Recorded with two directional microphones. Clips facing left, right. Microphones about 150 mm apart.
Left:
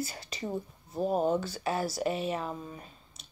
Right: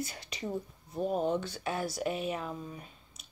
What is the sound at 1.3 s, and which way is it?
Speech, 5° left (ahead or behind).